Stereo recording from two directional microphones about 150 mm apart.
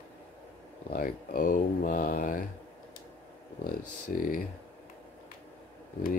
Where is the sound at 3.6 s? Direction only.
65° left (ahead or behind).